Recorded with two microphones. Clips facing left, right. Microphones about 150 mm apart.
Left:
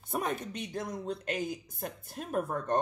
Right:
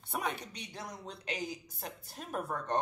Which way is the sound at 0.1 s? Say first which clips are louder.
Left 4 dB; 45° left (ahead or behind).